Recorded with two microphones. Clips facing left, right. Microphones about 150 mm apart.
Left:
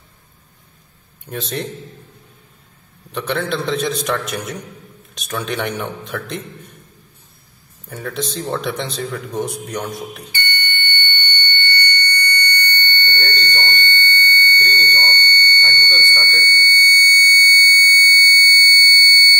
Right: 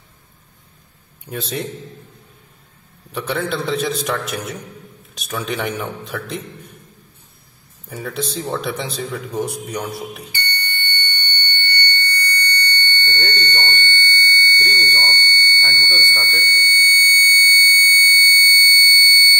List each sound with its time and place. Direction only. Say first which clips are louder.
1.2 s a man's voice: even; 5° right (ahead or behind)
3.1 s a man's voice: left 1 dB; 5° right (ahead or behind)
7.9 s speech: even; 5° right (ahead or behind)
12.2 s a sound: left 1 dB; 35° right (ahead or behind)
13.1 s music: right 1 dB; 15° right (ahead or behind)